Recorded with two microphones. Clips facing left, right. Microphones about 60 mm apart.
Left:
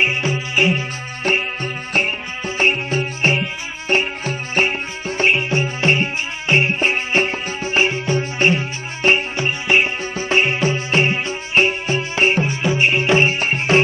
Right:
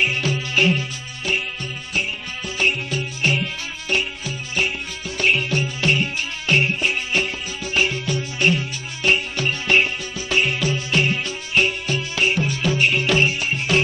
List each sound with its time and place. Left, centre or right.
0.0 s music: left
1.2 s music: left
10.1 s music: left